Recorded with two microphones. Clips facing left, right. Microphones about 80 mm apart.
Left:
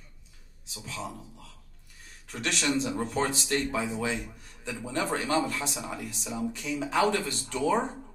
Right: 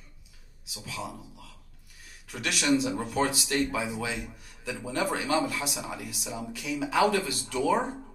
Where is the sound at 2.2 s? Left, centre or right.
Left.